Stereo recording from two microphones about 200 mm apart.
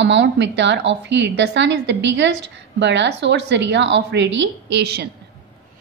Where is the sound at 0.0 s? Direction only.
65° right (ahead or behind).